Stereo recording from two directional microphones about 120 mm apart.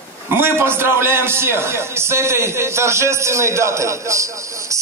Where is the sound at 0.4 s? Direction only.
20° right (ahead or behind).